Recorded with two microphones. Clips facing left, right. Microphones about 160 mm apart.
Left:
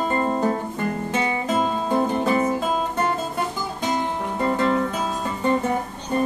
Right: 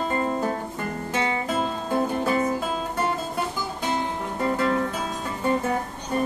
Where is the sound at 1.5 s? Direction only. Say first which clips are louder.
Left 4 dB; 45° left (ahead or behind).